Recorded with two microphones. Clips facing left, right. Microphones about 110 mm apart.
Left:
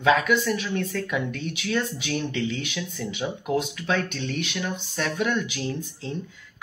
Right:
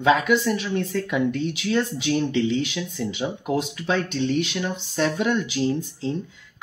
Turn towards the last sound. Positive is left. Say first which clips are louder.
# right 5 dB
turn(degrees=-25)  # may be behind; listen again after turning